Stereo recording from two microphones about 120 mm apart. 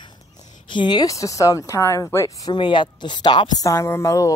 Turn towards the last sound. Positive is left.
turn(degrees=25)  # may be behind; listen again after turning